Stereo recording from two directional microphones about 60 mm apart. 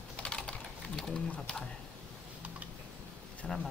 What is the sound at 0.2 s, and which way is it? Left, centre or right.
Typing, centre.